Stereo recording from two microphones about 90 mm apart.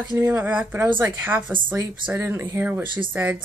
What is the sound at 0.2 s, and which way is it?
Speech, 20° right (ahead or behind).